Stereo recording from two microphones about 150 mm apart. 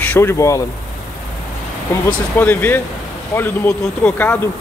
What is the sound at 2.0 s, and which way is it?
Speech, 10° left (ahead or behind).